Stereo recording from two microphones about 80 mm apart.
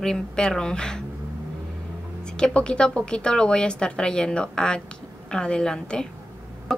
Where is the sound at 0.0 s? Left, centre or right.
Centre.